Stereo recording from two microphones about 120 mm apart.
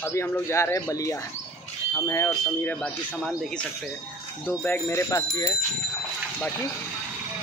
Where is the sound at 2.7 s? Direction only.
10° left (ahead or behind).